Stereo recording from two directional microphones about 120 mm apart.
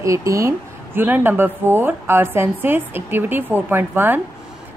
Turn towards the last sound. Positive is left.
turn(degrees=-15)  # may be behind; listen again after turning